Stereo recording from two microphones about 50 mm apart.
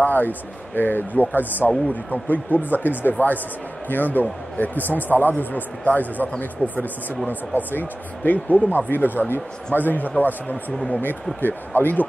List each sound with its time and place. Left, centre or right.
0.0 s speech: left